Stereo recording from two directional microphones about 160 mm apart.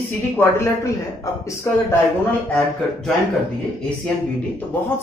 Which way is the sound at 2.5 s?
5° left (ahead or behind).